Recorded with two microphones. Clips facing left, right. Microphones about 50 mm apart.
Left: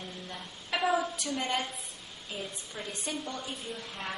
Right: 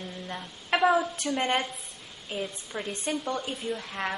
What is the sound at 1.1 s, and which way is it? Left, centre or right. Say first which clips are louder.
A woman's voice: right 5 dB; right.